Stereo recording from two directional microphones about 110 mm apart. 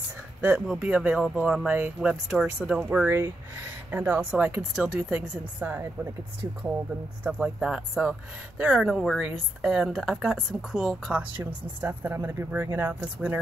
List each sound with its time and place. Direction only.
0.4 s speech: 10° right (ahead or behind)
7.2 s speech: 10° right (ahead or behind)